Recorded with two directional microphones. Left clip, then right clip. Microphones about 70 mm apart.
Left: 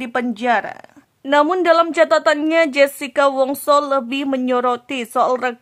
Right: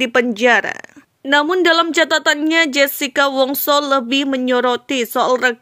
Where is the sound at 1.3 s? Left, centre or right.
Centre.